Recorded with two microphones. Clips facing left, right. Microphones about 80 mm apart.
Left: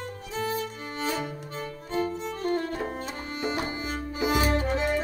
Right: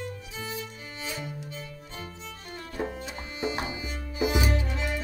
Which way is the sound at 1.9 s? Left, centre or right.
Left.